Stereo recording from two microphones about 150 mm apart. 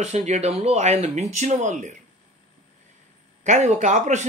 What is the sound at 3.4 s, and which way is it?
Speech, 55° right (ahead or behind).